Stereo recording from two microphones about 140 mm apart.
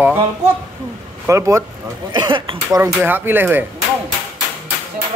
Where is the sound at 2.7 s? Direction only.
15° right (ahead or behind).